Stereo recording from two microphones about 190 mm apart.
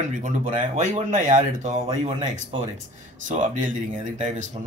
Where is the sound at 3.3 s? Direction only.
40° right (ahead or behind).